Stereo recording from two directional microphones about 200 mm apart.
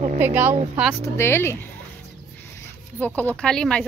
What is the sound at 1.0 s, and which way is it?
Speech, 10° left (ahead or behind).